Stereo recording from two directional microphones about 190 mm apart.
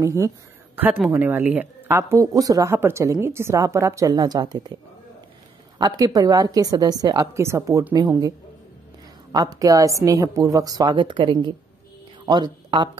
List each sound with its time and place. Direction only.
0.0 s speech: 15° right (ahead or behind)
5.8 s a woman's voice: 20° right (ahead or behind)
9.3 s a woman's voice: 20° right (ahead or behind)